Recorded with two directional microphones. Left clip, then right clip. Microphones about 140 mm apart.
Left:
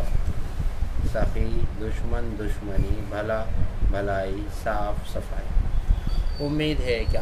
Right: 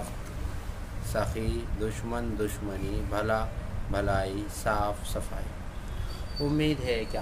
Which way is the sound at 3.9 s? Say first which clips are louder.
Left 2 dB; 45° right (ahead or behind).